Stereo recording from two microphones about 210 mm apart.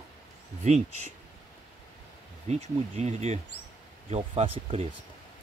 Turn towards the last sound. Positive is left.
turn(degrees=-30)  # may be behind; listen again after turning